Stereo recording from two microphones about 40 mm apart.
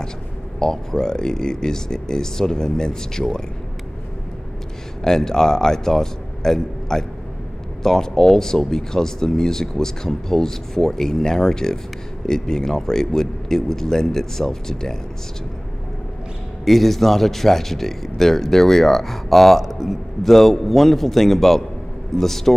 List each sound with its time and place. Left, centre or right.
0.6 s speech: centre
5.0 s speech: centre
16.6 s speech: centre